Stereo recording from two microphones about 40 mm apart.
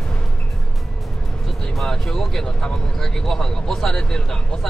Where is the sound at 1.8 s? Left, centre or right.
Centre.